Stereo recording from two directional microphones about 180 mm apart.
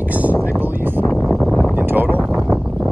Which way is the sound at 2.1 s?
5° left (ahead or behind).